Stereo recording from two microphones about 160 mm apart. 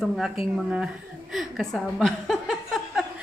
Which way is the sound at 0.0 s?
Centre (ahead or behind).